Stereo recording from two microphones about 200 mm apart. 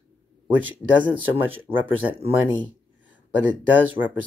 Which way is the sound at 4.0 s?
15° right (ahead or behind).